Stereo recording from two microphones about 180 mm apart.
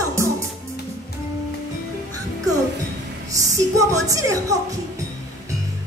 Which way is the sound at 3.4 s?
20° right (ahead or behind).